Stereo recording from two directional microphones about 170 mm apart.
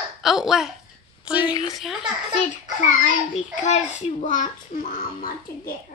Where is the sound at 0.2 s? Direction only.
Centre (ahead or behind).